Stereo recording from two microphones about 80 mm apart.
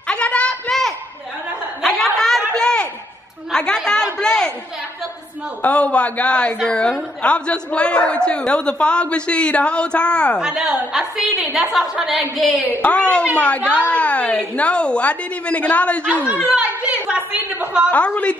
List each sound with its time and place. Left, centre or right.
0.1 s a sound: centre
3.5 s chatter: centre
5.6 s a man's voice: centre
10.4 s a woman's voice: centre
12.8 s a man's voice: centre
16.4 s a woman's voice: centre
17.9 s a man's voice: centre